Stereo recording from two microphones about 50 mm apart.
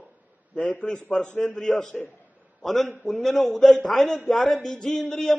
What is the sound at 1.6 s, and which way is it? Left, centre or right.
A man's voice, centre.